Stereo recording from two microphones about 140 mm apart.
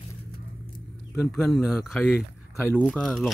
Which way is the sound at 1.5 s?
Centre (ahead or behind).